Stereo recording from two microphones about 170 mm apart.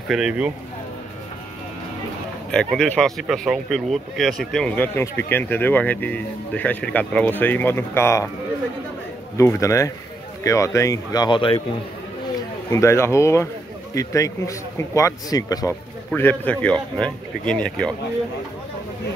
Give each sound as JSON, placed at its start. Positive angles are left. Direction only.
{"t": 0.1, "sound": "speech", "side_deg": -5}
{"t": 2.5, "sound": "speech", "side_deg": 5}
{"t": 9.4, "sound": "a man's voice", "side_deg": 15}
{"t": 12.7, "sound": "a man's voice", "side_deg": 15}
{"t": 16.1, "sound": "speech", "side_deg": 10}